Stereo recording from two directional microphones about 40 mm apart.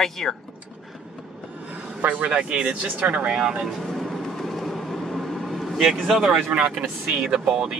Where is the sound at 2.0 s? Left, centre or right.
Right.